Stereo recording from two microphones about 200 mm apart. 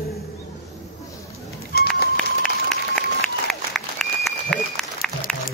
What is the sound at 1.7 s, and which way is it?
Run, 50° left (ahead or behind).